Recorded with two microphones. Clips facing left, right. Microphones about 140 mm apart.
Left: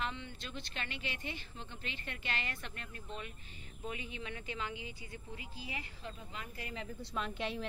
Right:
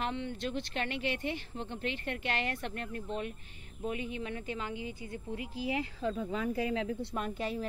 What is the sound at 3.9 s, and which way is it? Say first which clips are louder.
A woman's voice: right 7 dB; 50° right (ahead or behind).